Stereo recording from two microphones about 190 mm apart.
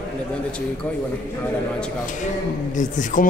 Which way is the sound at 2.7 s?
40° left (ahead or behind).